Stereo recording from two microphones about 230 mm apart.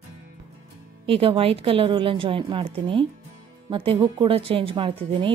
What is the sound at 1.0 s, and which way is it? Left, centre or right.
A woman's voice, right.